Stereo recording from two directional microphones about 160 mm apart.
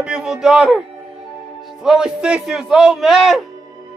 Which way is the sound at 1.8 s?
5° right (ahead or behind).